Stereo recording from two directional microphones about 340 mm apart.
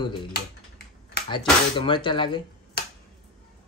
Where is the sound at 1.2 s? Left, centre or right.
Left.